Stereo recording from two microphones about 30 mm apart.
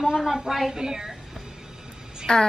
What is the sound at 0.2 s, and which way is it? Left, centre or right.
Speech, centre.